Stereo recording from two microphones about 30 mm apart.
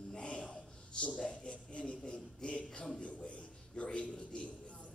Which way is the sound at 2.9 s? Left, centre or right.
Left.